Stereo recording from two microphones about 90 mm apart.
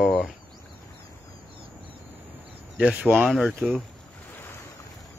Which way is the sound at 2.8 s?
10° right (ahead or behind).